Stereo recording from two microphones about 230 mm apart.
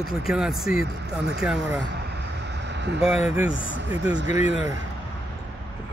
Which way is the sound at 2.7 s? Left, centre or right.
Right.